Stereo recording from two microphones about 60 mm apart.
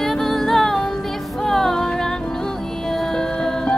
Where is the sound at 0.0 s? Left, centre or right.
Centre.